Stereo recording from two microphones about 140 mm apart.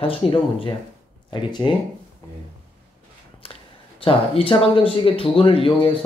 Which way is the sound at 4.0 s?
40° left (ahead or behind).